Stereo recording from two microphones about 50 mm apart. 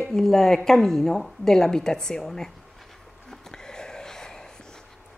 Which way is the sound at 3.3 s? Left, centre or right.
Centre.